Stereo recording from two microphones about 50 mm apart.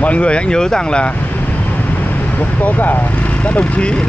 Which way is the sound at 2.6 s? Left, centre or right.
Left.